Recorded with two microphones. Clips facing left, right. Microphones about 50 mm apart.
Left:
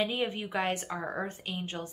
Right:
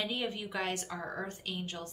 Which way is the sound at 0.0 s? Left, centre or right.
Left.